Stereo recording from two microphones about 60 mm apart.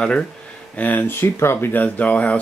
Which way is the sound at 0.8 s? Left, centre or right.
Left.